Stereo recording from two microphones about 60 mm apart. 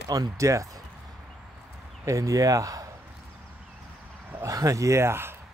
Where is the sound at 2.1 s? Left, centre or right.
Right.